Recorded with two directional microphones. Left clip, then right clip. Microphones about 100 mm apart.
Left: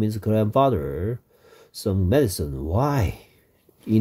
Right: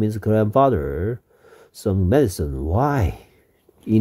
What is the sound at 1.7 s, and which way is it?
Speech, 60° right (ahead or behind).